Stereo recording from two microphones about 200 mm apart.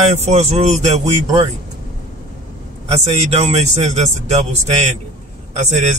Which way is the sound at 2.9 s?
30° right (ahead or behind).